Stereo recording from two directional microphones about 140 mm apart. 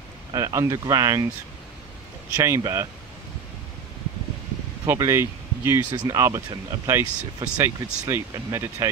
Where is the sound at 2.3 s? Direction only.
25° right (ahead or behind).